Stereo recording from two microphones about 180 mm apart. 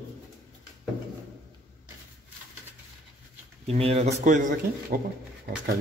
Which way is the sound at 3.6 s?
35° right (ahead or behind).